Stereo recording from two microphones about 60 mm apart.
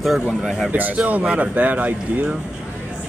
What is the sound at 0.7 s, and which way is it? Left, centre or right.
Speech, right.